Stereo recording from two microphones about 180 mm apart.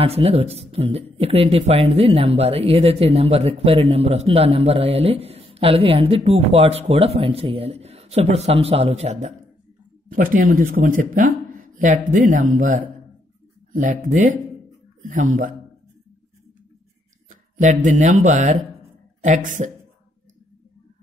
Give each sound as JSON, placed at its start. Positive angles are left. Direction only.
{"t": 0.0, "sound": "speech", "side_deg": -35}
{"t": 10.1, "sound": "speech", "side_deg": -50}
{"t": 17.3, "sound": "speech", "side_deg": -45}